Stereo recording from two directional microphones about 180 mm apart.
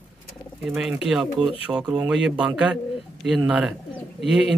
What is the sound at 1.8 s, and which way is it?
Speech, 20° right (ahead or behind).